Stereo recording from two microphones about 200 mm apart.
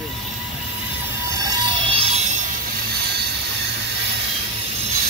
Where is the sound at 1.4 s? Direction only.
25° right (ahead or behind).